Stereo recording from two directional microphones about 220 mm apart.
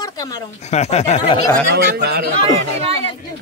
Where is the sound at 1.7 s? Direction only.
45° right (ahead or behind).